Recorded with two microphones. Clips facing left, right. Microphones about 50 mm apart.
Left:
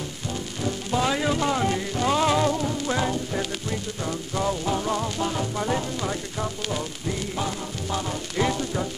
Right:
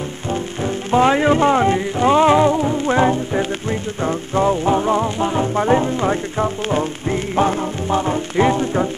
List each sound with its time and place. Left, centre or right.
0.3 s speech: right
4.0 s music: right